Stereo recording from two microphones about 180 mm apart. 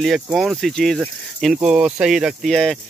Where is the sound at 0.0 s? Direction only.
Centre (ahead or behind).